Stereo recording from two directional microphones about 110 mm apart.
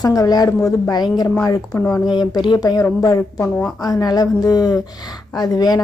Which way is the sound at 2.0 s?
45° left (ahead or behind).